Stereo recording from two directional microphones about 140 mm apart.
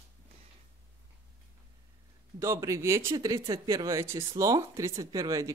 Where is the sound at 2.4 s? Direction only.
20° right (ahead or behind).